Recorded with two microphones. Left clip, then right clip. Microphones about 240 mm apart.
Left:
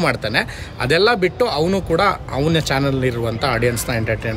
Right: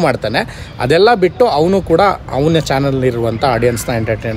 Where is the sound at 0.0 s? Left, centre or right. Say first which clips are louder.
Right 4 dB; centre.